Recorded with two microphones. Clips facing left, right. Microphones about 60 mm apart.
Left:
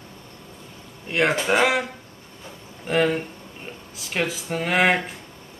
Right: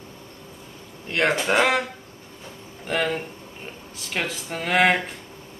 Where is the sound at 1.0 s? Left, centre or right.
Centre.